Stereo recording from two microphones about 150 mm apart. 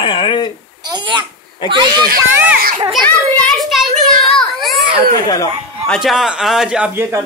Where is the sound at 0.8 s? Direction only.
30° right (ahead or behind).